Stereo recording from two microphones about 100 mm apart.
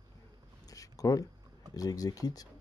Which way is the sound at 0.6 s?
35° left (ahead or behind).